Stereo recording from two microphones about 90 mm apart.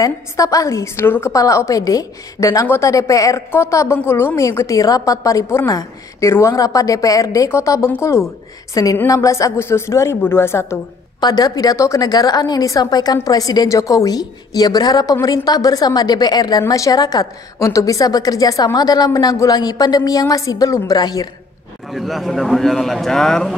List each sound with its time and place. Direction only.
0.0 s a woman's voice: 40° left (ahead or behind)
1.3 s a woman's voice: 35° left (ahead or behind)
11.1 s a woman's voice: 50° left (ahead or behind)
21.9 s a man's voice: centre (ahead or behind)